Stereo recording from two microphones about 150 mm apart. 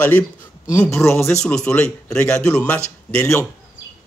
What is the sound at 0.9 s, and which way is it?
Speech, 15° left (ahead or behind).